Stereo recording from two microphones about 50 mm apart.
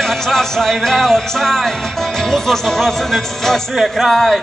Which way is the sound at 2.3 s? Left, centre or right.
Centre.